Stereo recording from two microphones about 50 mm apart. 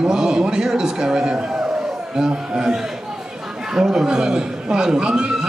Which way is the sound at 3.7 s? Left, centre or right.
Centre.